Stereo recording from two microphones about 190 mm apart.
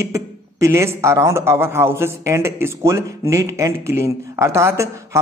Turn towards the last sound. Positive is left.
turn(degrees=-15)  # may be behind; listen again after turning